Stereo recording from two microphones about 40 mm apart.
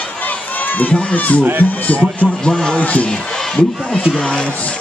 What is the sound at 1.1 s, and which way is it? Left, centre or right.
Speech, left.